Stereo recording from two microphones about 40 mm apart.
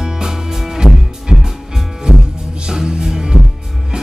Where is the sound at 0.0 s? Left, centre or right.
Centre.